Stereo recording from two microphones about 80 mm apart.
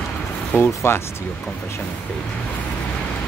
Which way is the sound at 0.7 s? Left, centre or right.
Left.